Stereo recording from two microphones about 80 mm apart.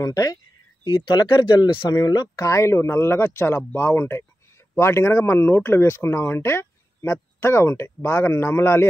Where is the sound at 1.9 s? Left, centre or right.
Left.